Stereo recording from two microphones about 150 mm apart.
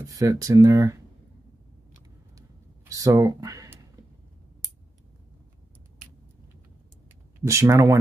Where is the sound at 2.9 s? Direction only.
20° right (ahead or behind).